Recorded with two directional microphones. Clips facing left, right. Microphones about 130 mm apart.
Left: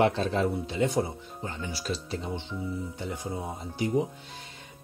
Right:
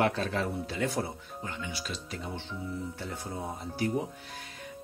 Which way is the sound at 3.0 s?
15° left (ahead or behind).